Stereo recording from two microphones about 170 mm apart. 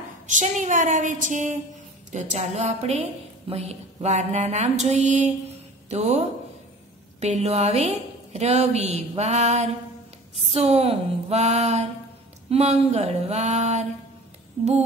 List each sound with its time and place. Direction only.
0.3 s a woman's voice: 45° right (ahead or behind)